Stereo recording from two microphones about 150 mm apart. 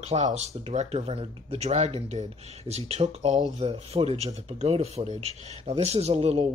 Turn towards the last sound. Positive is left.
turn(degrees=-45)  # may be behind; listen again after turning